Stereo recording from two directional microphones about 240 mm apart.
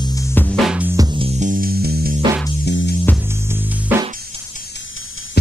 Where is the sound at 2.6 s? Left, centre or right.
Left.